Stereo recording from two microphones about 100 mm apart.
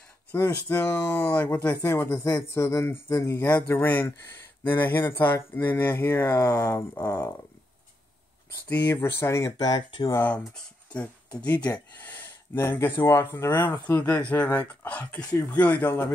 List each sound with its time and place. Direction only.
0.3 s speech: 25° left (ahead or behind)
5.1 s speech: 20° left (ahead or behind)
8.6 s speech: 20° left (ahead or behind)
8.9 s speech: 30° left (ahead or behind)
9.6 s speech: 45° left (ahead or behind)
10.3 s speech: 15° left (ahead or behind)